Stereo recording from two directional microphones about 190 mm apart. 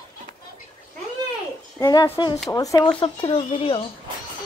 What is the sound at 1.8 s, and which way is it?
Speech, 20° left (ahead or behind).